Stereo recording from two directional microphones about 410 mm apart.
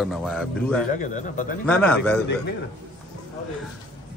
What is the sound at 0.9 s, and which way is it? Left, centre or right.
Speech, centre.